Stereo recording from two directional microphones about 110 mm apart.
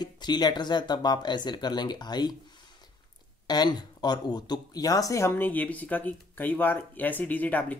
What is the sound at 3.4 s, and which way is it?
Speech, 40° left (ahead or behind).